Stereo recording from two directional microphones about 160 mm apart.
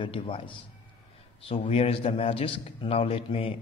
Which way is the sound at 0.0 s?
35° left (ahead or behind).